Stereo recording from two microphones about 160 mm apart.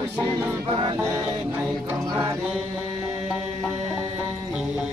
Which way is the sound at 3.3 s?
5° right (ahead or behind).